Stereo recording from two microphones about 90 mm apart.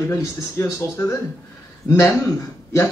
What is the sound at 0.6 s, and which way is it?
A man's voice, 25° left (ahead or behind).